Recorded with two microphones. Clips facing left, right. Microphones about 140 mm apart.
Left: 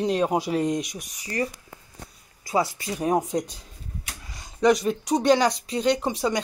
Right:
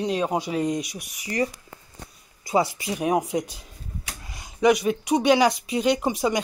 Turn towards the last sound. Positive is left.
turn(degrees=-15)  # may be behind; listen again after turning